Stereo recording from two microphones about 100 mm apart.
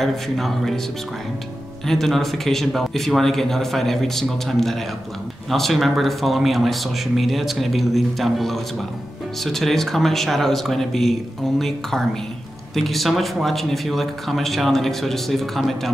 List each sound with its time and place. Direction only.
0.0 s speech: centre (ahead or behind)
1.9 s speech: centre (ahead or behind)